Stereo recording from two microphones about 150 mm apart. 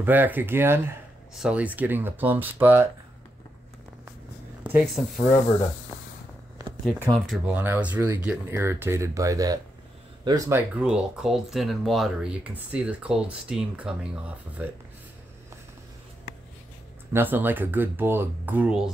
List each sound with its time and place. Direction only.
0.0 s speech: 10° right (ahead or behind)
4.9 s speech: centre (ahead or behind)
7.1 s speech: centre (ahead or behind)
7.5 s speech: 10° right (ahead or behind)
10.8 s speech: 5° right (ahead or behind)
17.1 s speech: 15° right (ahead or behind)